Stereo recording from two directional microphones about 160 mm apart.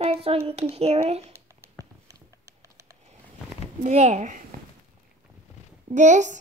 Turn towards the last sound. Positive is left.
turn(degrees=-50)  # may be behind; listen again after turning